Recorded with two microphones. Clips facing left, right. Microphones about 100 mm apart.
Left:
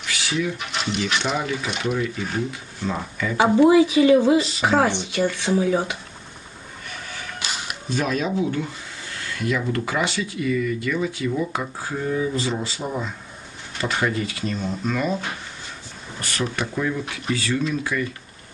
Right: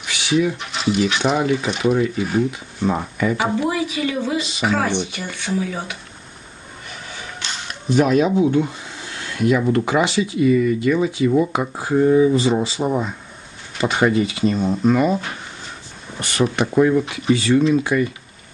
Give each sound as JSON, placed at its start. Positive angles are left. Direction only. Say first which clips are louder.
{"t": 0.0, "sound": "a sound", "louder": "right 7 dB", "side_deg": -15}
{"t": 0.6, "sound": "speech", "louder": "right 6 dB", "side_deg": 0}
{"t": 1.4, "sound": "speech", "louder": "right 7 dB", "side_deg": -20}
{"t": 2.1, "sound": "speech", "louder": "right 7 dB", "side_deg": -5}
{"t": 2.8, "sound": "speech", "louder": "right 6 dB", "side_deg": -20}
{"t": 3.5, "sound": "speech", "louder": "left 7 dB", "side_deg": 25}
{"t": 7.3, "sound": "a sound", "louder": "left 1 dB", "side_deg": 10}
{"t": 7.9, "sound": "speech", "louder": "right 8 dB", "side_deg": -15}
{"t": 16.4, "sound": "speech", "louder": "right 9 dB", "side_deg": -35}
{"t": 17.3, "sound": "speech", "louder": "right 8 dB", "side_deg": -20}
{"t": 17.9, "sound": "speech", "louder": "right 7 dB", "side_deg": -50}